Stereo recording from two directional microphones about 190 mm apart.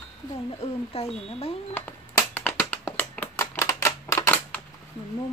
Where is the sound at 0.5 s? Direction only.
30° left (ahead or behind).